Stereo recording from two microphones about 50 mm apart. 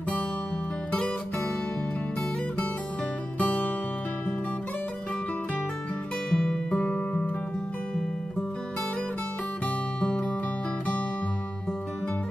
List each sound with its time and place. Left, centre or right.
3.3 s music: left
6.3 s music: centre
6.7 s music: left
9.9 s music: left